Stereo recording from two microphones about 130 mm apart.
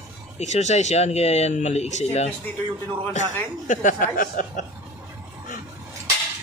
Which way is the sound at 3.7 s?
85° left.